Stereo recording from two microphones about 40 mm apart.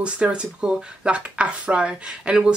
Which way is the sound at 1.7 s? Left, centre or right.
Right.